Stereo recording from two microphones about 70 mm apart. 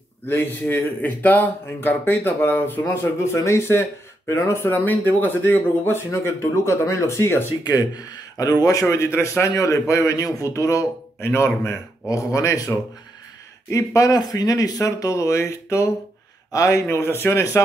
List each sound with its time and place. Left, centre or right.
0.3 s speech: left
7.6 s a man's voice: left
8.8 s speech: left
11.1 s speech: left
12.1 s speech: left